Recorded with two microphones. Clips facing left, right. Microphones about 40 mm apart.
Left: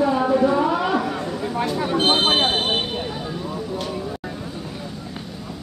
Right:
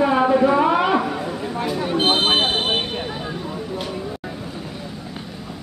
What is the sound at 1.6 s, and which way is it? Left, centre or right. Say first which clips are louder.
Vehicle: even; centre.